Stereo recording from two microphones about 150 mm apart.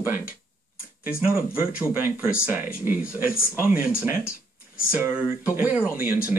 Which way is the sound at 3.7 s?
70° left (ahead or behind).